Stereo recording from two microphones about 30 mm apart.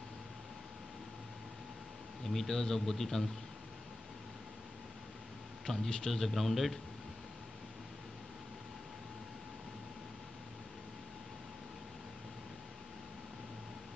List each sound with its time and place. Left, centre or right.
2.2 s speech: centre
5.9 s a man's voice: left
6.1 s speech: centre